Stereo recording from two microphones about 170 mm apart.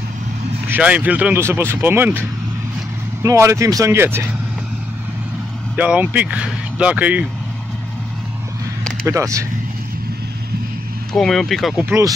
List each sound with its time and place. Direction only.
0.7 s speech: 10° right (ahead or behind)
5.8 s speech: 10° right (ahead or behind)
9.0 s speech: 20° right (ahead or behind)
11.1 s speech: centre (ahead or behind)
11.8 s speech: 15° right (ahead or behind)